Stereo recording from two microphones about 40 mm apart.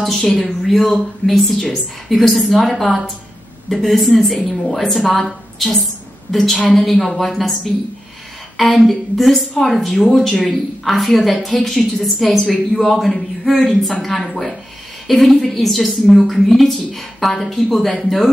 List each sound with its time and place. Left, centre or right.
0.3 s speech: centre
6.3 s a woman's voice: centre